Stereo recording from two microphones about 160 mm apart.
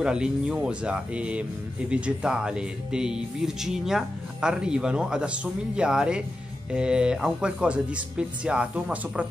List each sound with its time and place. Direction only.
0.0 s speech: 5° right (ahead or behind)